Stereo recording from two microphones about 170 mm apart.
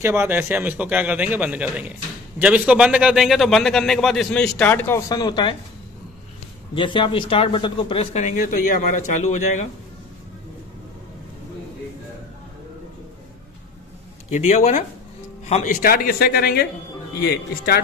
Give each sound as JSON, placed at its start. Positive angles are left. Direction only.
{"t": 0.0, "sound": "a man's voice", "side_deg": -15}
{"t": 6.7, "sound": "speech", "side_deg": 30}
{"t": 14.3, "sound": "a man's voice", "side_deg": 45}